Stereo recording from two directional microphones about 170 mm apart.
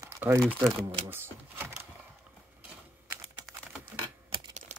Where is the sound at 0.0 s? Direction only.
15° right (ahead or behind).